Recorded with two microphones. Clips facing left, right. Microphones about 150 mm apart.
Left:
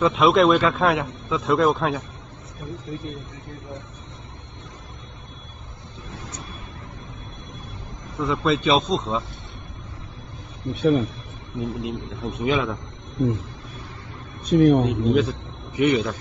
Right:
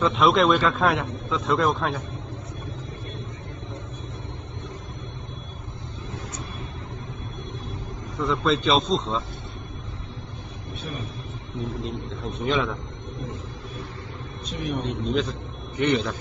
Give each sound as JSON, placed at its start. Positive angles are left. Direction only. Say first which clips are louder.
{"t": 0.0, "sound": "a man's voice", "louder": "left 3 dB", "side_deg": 0}
{"t": 8.2, "sound": "a man's voice", "louder": "left 1 dB", "side_deg": 0}
{"t": 10.7, "sound": "a man's voice", "louder": "left 16 dB", "side_deg": 70}
{"t": 11.8, "sound": "a man's voice", "louder": "left 2 dB", "side_deg": 5}
{"t": 14.5, "sound": "a man's voice", "louder": "left 14 dB", "side_deg": 55}
{"t": 14.9, "sound": "a man's voice", "louder": "left 5 dB", "side_deg": 0}